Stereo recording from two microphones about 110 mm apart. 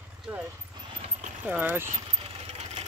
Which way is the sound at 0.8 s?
40° right (ahead or behind).